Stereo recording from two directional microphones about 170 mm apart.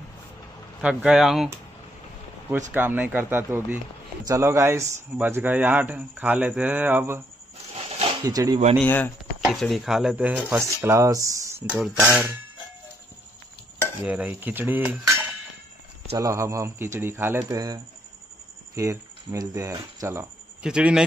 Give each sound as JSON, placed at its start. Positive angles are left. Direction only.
{"t": 0.7, "sound": "speech", "side_deg": -5}
{"t": 2.7, "sound": "speech", "side_deg": -10}
{"t": 8.3, "sound": "speech", "side_deg": -20}
{"t": 8.8, "sound": "speech", "side_deg": 10}
{"t": 9.4, "sound": "speech", "side_deg": 0}
{"t": 11.7, "sound": "speech", "side_deg": -5}
{"t": 14.0, "sound": "speech", "side_deg": -10}
{"t": 18.8, "sound": "speech", "side_deg": -20}
{"t": 20.6, "sound": "speech", "side_deg": -5}